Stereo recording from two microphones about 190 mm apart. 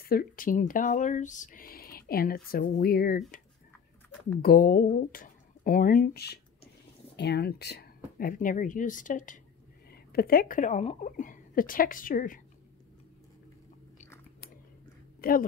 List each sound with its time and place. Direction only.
0.0 s speech: 50° left (ahead or behind)
4.4 s a woman's voice: 50° left (ahead or behind)
15.1 s a woman's voice: 50° left (ahead or behind)